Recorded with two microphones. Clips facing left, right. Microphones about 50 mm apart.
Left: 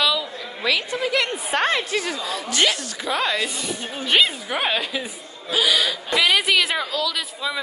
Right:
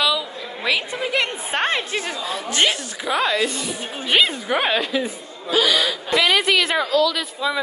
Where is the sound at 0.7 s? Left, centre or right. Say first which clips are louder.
Even; right.